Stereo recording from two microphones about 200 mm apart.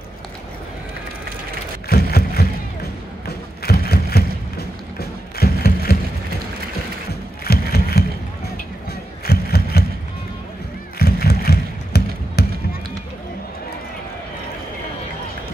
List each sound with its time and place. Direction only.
1.9 s a sound: 50° left (ahead or behind)
7.1 s music: 50° left (ahead or behind)
9.2 s crowd: 50° left (ahead or behind)
11.0 s music: 50° left (ahead or behind)